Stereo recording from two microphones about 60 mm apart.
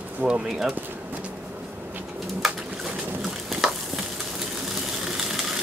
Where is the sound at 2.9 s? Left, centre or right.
Right.